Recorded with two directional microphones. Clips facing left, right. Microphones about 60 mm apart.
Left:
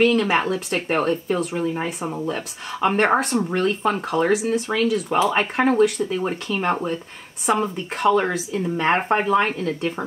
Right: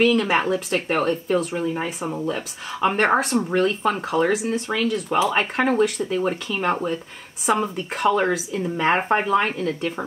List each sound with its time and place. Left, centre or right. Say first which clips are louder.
0.0 s speech: left 1 dB; centre